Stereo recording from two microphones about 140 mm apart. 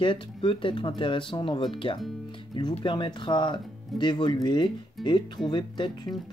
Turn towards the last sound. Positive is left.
turn(degrees=30)  # may be behind; listen again after turning